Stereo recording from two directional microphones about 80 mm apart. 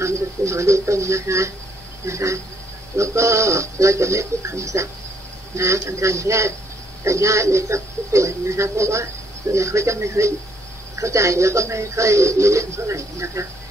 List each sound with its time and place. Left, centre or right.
0.0 s speech: right